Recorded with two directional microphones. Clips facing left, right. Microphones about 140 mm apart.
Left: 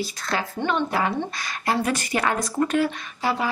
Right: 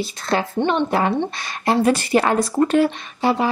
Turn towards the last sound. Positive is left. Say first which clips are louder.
# right 6 dB
turn(degrees=-25)  # may be behind; listen again after turning